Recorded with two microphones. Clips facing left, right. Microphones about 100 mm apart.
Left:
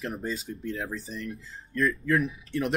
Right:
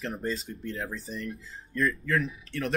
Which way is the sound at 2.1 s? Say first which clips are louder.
Left 3 dB; 15° left (ahead or behind).